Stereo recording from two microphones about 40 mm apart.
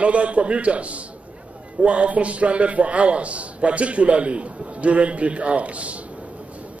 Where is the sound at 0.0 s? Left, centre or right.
Right.